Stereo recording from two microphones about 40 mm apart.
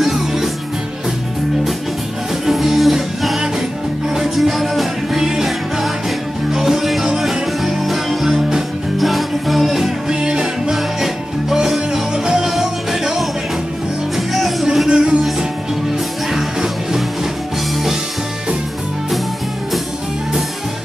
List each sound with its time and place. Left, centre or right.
0.0 s music: centre
2.5 s music: centre
8.3 s music: centre
8.9 s music: centre
10.0 s music: centre
11.0 s music: centre
14.9 s music: right
16.3 s music: centre